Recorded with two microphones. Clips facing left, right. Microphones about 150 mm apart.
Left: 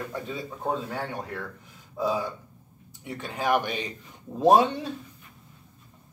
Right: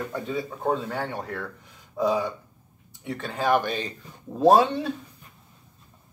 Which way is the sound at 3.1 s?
10° left (ahead or behind).